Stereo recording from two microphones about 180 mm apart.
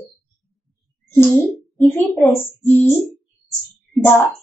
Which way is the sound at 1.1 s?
5° left (ahead or behind).